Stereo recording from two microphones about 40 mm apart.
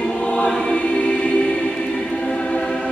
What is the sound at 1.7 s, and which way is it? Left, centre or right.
Music, centre.